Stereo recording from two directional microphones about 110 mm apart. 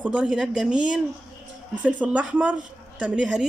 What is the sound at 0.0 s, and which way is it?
A woman's voice, 10° right (ahead or behind).